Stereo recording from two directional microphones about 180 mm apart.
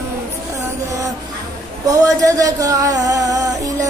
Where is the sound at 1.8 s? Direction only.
20° right (ahead or behind).